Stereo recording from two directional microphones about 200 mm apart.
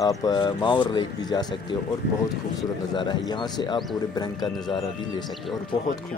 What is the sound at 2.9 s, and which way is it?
Speech, 20° left (ahead or behind).